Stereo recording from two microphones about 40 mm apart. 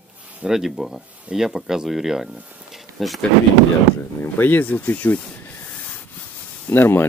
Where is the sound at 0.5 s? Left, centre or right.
Centre.